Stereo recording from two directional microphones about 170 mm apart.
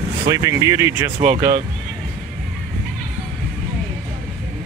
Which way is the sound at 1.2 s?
50° right (ahead or behind).